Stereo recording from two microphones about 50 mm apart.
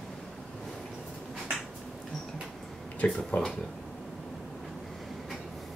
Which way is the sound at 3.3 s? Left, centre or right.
Left.